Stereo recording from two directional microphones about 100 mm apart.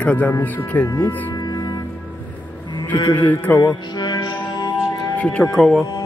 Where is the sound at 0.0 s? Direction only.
15° left (ahead or behind).